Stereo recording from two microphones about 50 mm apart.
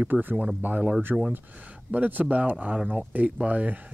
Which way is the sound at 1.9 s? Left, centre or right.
Right.